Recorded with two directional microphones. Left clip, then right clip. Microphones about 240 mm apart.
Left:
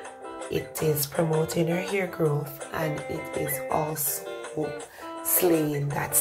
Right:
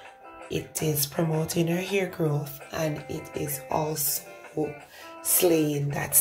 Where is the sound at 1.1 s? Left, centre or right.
Centre.